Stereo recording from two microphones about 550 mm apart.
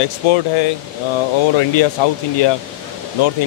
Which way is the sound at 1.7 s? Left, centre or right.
Left.